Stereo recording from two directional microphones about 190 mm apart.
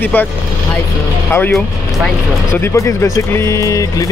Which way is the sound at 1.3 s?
10° left (ahead or behind).